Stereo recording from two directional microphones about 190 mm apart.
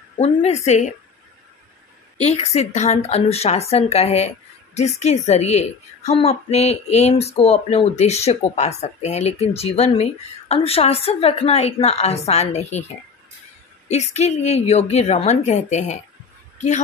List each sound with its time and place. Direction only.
0.2 s a woman's voice: 35° left (ahead or behind)
2.2 s a woman's voice: 35° left (ahead or behind)
13.8 s a woman's voice: 35° left (ahead or behind)